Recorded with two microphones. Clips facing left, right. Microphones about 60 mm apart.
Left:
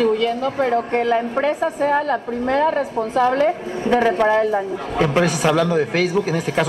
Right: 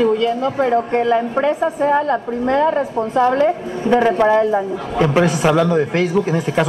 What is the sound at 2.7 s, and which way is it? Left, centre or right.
Speech, right.